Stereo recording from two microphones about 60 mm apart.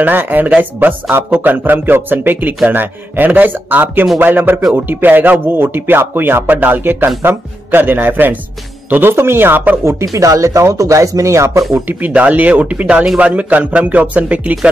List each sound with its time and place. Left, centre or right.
0.0 s a man's voice: right
10.1 s speech: right
11.9 s a man's voice: right